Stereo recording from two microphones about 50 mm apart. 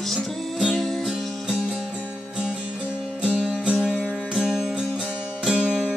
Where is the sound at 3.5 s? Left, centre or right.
Right.